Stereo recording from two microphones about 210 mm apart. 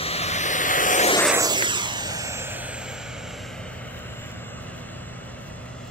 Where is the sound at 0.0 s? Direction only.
30° left (ahead or behind).